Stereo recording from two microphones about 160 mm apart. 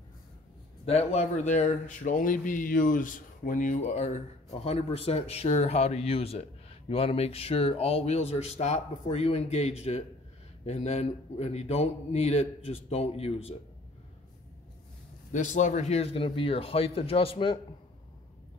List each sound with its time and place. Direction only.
0.8 s speech: 40° left (ahead or behind)
15.3 s speech: 50° left (ahead or behind)